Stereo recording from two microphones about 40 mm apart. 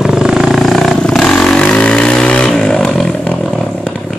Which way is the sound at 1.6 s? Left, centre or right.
Left.